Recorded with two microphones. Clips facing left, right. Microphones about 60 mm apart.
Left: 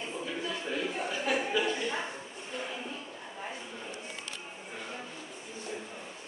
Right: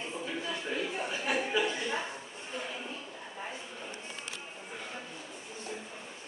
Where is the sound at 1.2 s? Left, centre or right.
Centre.